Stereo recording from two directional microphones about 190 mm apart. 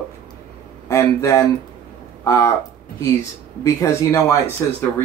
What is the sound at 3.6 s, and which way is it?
Speech, 15° left (ahead or behind).